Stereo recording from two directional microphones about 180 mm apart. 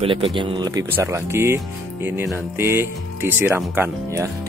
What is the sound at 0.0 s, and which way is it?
A man's voice, 30° right (ahead or behind).